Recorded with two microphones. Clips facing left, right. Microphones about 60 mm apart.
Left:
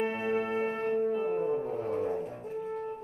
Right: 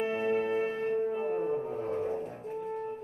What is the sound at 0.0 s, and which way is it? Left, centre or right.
Music, left.